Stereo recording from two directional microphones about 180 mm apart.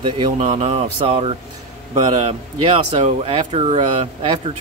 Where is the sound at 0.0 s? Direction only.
25° right (ahead or behind).